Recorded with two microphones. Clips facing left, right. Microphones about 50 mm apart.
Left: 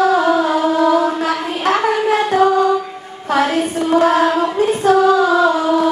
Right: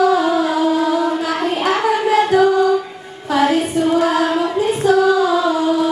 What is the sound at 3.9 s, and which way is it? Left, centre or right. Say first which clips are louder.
Choir: left 6 dB; left.